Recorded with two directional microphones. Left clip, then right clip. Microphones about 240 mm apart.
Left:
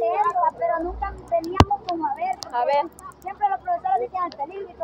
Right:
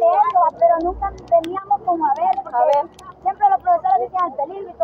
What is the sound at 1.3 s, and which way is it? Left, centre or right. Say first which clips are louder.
Speech: right 8 dB; centre.